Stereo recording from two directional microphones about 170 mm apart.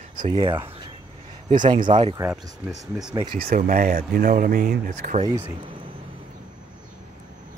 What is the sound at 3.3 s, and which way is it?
Speech, 60° right (ahead or behind).